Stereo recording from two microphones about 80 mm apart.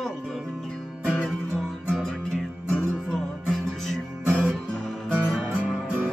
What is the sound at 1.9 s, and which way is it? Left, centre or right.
Music, centre.